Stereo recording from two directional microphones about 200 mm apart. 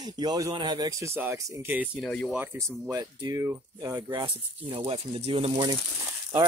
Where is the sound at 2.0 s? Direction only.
5° left (ahead or behind).